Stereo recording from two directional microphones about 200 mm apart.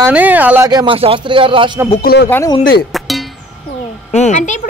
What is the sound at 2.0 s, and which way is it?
Speech, 50° left (ahead or behind).